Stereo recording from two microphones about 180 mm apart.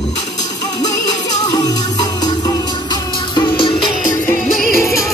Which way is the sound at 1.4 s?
20° left (ahead or behind).